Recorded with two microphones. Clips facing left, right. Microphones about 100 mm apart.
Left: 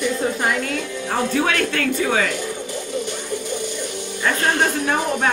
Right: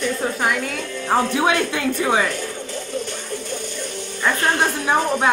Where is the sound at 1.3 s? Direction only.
15° right (ahead or behind).